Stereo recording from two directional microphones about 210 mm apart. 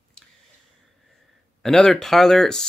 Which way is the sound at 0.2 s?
5° left (ahead or behind).